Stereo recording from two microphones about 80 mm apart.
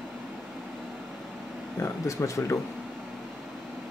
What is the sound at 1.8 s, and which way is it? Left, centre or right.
Speech, left.